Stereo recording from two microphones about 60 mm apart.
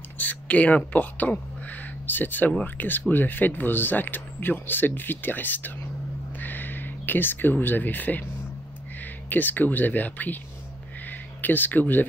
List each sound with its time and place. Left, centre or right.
0.2 s speech: left
9.3 s speech: left